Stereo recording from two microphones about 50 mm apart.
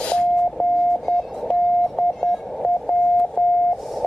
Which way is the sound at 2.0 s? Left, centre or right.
Centre.